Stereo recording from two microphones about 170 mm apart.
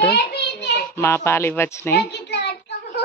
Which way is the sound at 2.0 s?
80° left.